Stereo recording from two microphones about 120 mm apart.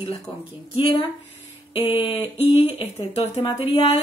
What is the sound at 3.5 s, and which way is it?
Speech, 50° left (ahead or behind).